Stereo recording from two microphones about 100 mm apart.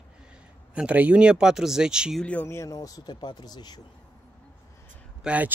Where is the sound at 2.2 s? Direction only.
15° left (ahead or behind).